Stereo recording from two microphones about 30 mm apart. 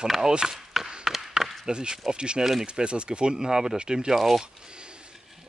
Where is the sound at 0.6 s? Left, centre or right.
Centre.